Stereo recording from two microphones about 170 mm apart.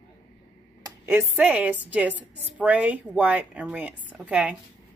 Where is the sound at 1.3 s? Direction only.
10° right (ahead or behind).